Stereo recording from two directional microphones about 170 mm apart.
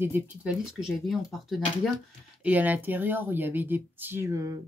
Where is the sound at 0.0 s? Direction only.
10° right (ahead or behind).